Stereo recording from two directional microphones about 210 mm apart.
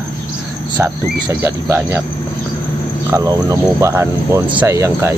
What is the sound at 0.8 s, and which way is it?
Speech, 10° right (ahead or behind).